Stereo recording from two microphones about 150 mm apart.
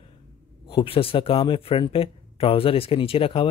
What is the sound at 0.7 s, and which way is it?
A man's voice, 40° left (ahead or behind).